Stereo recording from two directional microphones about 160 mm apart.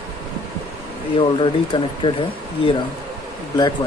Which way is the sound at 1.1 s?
35° left (ahead or behind).